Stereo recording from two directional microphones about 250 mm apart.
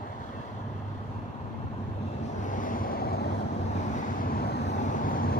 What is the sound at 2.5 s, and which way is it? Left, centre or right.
Vehicle, left.